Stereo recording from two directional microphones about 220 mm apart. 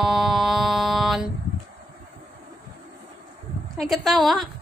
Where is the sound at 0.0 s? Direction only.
Centre (ahead or behind).